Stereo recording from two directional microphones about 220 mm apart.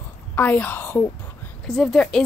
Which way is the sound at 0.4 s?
10° left (ahead or behind).